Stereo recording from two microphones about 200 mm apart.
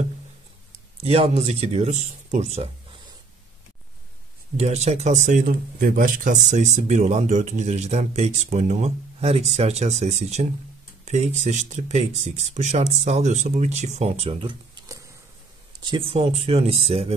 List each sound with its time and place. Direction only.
1.0 s speech: 30° right (ahead or behind)
4.6 s speech: 35° right (ahead or behind)